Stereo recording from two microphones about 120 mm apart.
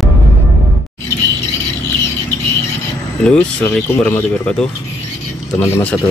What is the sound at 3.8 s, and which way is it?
Speech, 20° left (ahead or behind).